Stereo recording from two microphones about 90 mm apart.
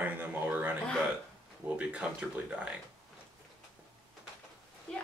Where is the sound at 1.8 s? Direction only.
15° right (ahead or behind).